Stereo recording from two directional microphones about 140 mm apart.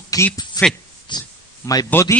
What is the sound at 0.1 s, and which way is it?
Speech, 25° left (ahead or behind).